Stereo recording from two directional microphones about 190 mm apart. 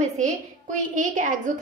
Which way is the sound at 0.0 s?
40° right (ahead or behind).